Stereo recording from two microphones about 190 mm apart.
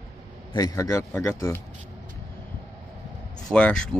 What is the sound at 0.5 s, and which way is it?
Speech, 15° left (ahead or behind).